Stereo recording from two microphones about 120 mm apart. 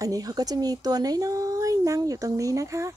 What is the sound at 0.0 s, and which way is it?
Speech, 30° right (ahead or behind).